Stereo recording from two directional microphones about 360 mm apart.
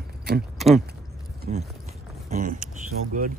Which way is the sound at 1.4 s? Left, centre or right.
Centre.